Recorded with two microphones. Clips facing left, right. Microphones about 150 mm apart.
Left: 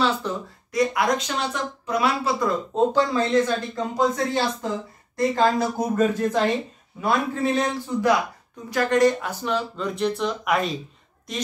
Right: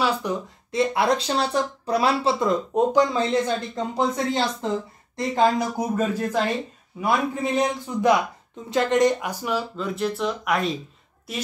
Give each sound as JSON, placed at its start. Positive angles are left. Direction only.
{"t": 0.0, "sound": "a man's voice", "side_deg": -15}
{"t": 0.7, "sound": "speech", "side_deg": -30}
{"t": 2.7, "sound": "speech", "side_deg": -15}
{"t": 7.0, "sound": "a man's voice", "side_deg": -15}